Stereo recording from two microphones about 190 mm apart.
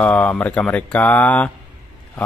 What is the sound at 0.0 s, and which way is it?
Speech, 5° left (ahead or behind).